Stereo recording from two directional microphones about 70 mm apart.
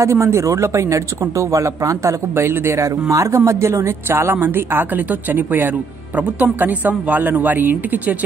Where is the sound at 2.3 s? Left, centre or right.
Right.